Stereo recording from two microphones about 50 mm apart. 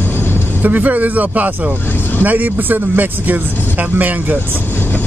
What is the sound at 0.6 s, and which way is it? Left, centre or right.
Speech, right.